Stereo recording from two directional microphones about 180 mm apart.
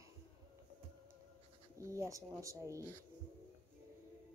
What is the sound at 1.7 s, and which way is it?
Speech, 15° right (ahead or behind).